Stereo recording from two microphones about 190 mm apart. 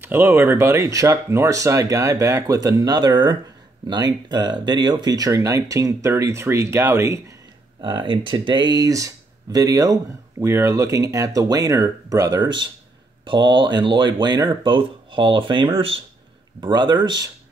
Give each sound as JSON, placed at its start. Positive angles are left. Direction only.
{"t": 0.0, "sound": "speech", "side_deg": -10}